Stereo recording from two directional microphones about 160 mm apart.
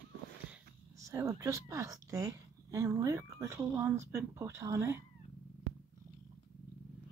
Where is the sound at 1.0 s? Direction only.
20° right (ahead or behind).